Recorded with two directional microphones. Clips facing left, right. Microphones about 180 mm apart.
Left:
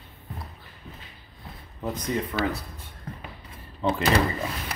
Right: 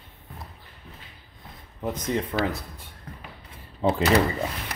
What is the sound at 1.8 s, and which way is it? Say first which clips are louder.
Speech: right 1 dB; 20° right (ahead or behind).